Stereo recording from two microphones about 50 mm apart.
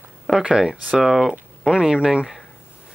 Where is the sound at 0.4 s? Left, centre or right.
Centre.